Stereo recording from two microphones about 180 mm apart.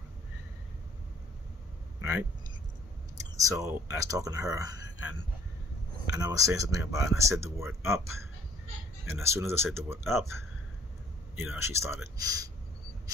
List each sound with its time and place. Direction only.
3.2 s speech: 20° right (ahead or behind)
6.1 s speech: 20° right (ahead or behind)